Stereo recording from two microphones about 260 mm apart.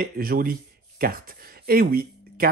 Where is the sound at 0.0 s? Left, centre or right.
Right.